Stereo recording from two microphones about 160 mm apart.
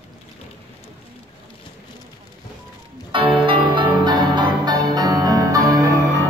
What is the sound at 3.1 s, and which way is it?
Music, 30° right (ahead or behind).